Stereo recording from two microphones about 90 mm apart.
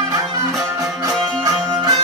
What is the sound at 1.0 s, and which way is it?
Music, 45° right (ahead or behind).